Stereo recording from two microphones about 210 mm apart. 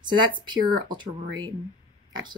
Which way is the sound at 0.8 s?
20° right (ahead or behind).